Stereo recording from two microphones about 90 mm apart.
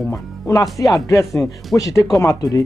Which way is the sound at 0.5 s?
40° left (ahead or behind).